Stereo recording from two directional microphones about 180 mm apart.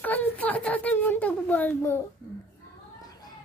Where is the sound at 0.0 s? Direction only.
10° left (ahead or behind).